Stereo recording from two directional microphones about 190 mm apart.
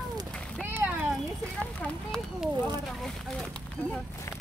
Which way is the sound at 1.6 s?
5° left (ahead or behind).